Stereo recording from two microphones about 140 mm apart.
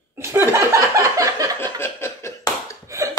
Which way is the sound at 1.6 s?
20° left (ahead or behind).